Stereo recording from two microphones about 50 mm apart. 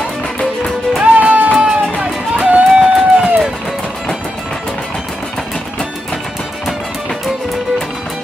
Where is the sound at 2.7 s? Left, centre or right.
Centre.